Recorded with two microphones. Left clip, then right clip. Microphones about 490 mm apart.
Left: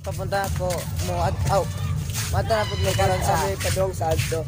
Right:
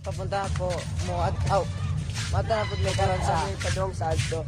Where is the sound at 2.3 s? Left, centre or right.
Right.